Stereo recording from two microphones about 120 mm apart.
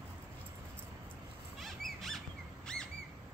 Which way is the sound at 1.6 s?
Centre (ahead or behind).